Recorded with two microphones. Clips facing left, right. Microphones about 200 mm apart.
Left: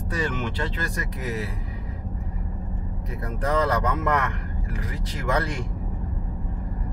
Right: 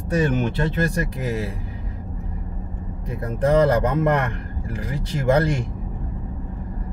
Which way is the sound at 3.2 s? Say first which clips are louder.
Right 7 dB; 30° right (ahead or behind).